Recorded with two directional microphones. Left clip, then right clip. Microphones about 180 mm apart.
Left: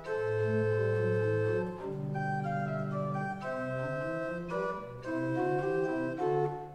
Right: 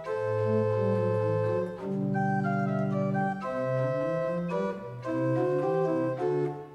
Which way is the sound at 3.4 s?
10° right (ahead or behind).